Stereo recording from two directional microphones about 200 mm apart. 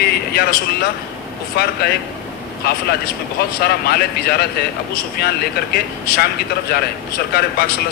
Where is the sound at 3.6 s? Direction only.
50° left (ahead or behind).